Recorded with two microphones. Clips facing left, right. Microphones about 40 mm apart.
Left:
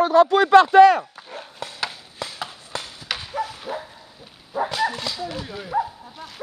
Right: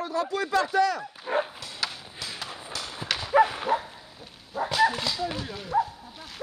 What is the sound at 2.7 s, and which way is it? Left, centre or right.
Clip-clop, left.